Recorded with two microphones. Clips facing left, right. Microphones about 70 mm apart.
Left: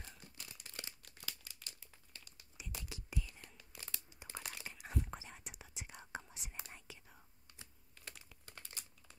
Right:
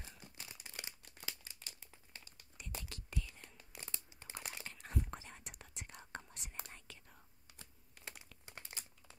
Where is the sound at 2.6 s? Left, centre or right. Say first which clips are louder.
Even; centre.